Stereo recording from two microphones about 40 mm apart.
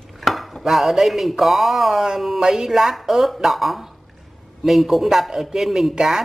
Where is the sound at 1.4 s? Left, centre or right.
Centre.